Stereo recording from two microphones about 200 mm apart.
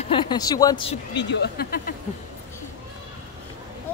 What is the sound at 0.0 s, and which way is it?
Speech, 25° left (ahead or behind).